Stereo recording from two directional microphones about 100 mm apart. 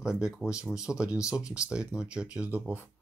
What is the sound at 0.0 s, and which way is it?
Speech, 10° right (ahead or behind).